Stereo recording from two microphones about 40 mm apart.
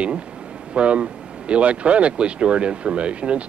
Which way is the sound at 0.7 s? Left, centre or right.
Right.